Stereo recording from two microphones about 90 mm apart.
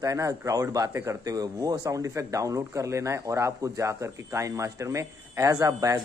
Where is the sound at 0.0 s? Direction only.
40° right (ahead or behind).